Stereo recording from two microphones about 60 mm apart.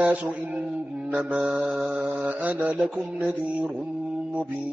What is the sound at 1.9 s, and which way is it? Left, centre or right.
Mantra, right.